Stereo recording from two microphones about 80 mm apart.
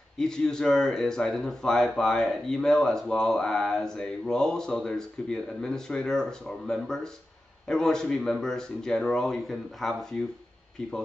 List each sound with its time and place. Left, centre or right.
0.2 s speech: centre